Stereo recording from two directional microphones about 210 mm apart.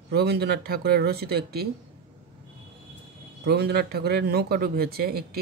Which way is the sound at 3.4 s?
50° right (ahead or behind).